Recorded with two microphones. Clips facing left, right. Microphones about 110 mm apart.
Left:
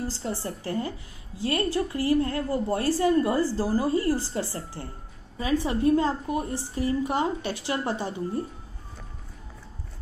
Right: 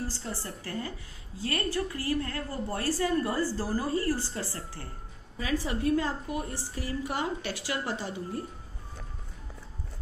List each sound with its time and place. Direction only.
0.2 s a woman's voice: 20° left (ahead or behind)